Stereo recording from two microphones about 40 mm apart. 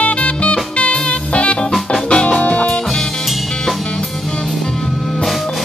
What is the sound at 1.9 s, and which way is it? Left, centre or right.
Music, centre.